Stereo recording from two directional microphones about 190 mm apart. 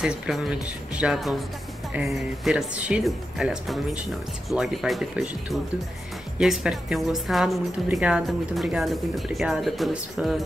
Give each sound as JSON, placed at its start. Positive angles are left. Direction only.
{"t": 0.0, "sound": "a woman's voice", "side_deg": -5}